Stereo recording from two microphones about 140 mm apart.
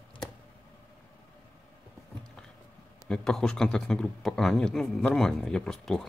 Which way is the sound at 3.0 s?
5° left (ahead or behind).